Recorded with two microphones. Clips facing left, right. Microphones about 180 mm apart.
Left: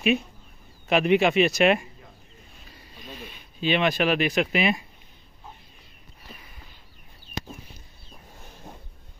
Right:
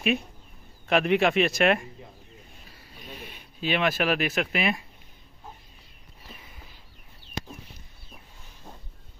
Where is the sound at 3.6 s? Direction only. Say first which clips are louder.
Left 3 dB; 5° right (ahead or behind).